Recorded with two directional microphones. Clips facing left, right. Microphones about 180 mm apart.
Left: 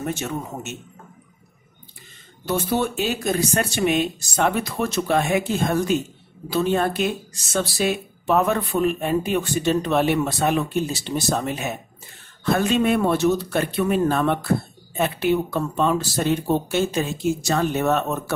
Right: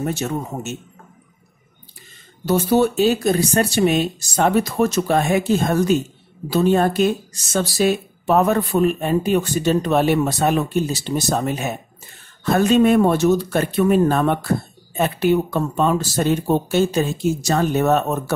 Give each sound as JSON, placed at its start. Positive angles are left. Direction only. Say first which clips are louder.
{"t": 0.0, "sound": "speech", "louder": "right 4 dB", "side_deg": -35}
{"t": 2.4, "sound": "speech", "louder": "right 6 dB", "side_deg": -40}